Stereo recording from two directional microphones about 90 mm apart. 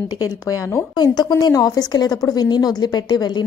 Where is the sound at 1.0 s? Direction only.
50° left (ahead or behind).